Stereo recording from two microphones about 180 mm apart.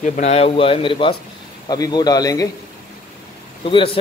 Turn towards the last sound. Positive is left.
turn(degrees=30)  # may be behind; listen again after turning